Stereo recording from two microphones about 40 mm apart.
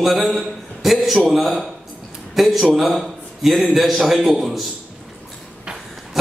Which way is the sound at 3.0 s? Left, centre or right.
Centre.